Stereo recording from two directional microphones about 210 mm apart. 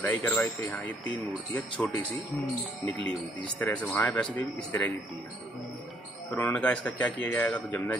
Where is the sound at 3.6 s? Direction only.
10° left (ahead or behind).